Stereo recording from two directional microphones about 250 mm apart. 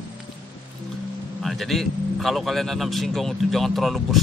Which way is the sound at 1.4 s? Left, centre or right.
Centre.